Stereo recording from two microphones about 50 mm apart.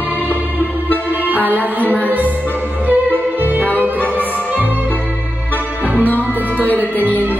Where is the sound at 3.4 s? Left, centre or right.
Right.